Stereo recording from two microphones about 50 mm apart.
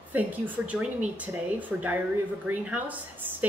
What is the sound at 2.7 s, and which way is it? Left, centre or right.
Speech, right.